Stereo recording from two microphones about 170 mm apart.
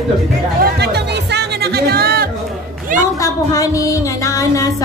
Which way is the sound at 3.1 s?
20° left (ahead or behind).